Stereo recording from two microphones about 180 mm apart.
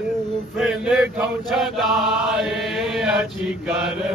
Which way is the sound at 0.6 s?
5° right (ahead or behind).